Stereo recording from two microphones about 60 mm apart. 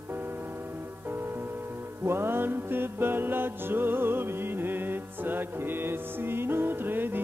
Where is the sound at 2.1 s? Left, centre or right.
Right.